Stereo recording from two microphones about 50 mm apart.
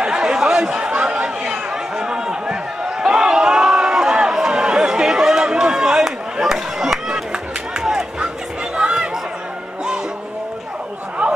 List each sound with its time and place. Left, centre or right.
0.0 s chatter: centre
3.0 s a sound: centre
8.7 s chatter: centre